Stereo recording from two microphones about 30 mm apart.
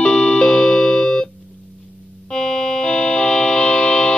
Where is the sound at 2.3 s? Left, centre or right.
Left.